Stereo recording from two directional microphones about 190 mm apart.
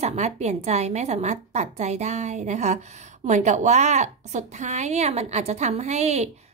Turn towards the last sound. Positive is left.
turn(degrees=-35)  # may be behind; listen again after turning